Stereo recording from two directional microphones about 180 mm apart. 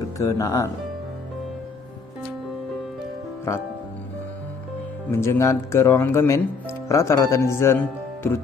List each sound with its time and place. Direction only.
0.2 s speech: 20° left (ahead or behind)
5.1 s speech: 15° left (ahead or behind)